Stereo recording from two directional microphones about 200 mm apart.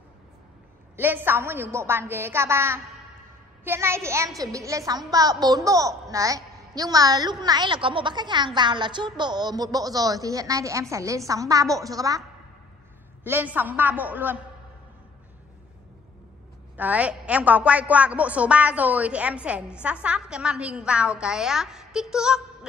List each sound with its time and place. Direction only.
0.9 s a woman's voice: 10° right (ahead or behind)
13.2 s a woman's voice: 10° right (ahead or behind)
16.7 s a woman's voice: 10° right (ahead or behind)